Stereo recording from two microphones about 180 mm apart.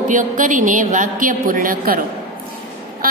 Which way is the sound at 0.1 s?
45° right (ahead or behind).